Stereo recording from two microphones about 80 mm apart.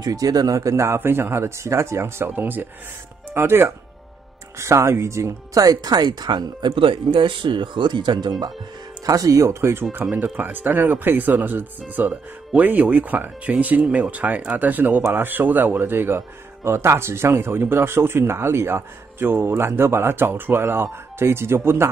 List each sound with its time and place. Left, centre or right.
0.0 s speech: right
10.1 s speech: right